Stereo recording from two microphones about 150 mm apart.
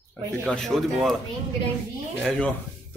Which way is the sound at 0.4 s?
5° left (ahead or behind).